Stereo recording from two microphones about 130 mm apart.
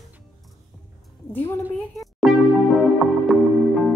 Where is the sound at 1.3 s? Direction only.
20° left (ahead or behind).